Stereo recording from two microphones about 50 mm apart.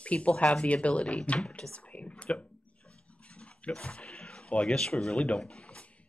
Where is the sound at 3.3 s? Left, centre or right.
Left.